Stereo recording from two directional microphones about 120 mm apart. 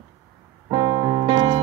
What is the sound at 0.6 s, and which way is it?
Music, 45° right (ahead or behind).